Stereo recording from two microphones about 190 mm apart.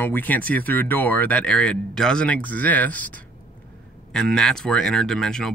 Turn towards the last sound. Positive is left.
turn(degrees=0)  # may be behind; listen again after turning